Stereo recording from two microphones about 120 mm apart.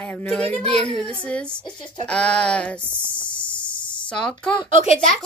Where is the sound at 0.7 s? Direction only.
5° left (ahead or behind).